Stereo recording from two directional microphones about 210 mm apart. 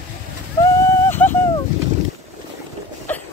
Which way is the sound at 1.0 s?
10° left (ahead or behind).